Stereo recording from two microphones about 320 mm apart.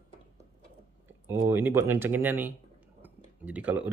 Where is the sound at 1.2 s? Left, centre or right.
Centre.